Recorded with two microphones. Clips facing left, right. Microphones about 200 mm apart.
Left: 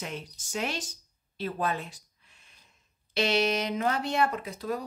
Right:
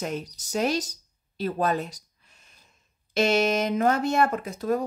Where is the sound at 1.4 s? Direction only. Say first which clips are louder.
Right 5 dB; 40° right (ahead or behind).